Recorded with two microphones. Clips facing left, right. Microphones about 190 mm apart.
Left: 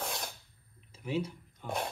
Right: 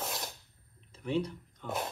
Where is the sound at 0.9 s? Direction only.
5° left (ahead or behind).